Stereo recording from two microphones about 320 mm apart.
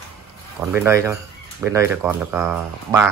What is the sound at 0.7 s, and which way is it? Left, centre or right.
Speech, centre.